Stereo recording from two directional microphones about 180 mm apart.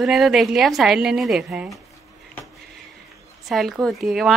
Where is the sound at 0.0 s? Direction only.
Centre (ahead or behind).